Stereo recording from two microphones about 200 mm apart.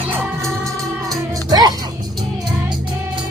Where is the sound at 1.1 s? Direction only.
20° right (ahead or behind).